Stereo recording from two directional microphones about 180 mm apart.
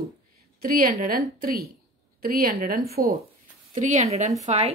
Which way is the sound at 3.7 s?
40° right (ahead or behind).